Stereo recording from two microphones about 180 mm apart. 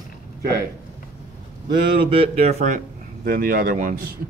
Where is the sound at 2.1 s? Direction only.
35° right (ahead or behind).